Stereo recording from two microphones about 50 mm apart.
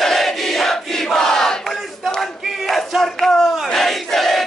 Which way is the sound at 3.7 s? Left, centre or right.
Centre.